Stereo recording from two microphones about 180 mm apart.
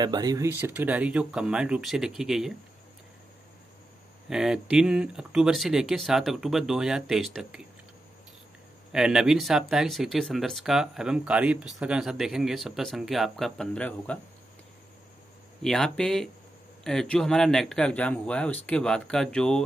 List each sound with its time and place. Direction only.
0.0 s speech: 20° right (ahead or behind); by 2.5 s centre (ahead or behind)
4.3 s speech: 5° right (ahead or behind)
8.9 s speech: 5° right (ahead or behind)
15.6 s speech: 5° left (ahead or behind)